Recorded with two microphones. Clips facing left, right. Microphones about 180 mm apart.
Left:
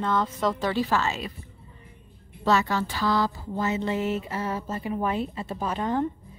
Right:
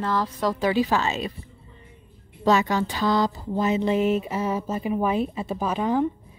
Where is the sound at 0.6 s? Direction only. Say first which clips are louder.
Right 6 dB; 15° right (ahead or behind).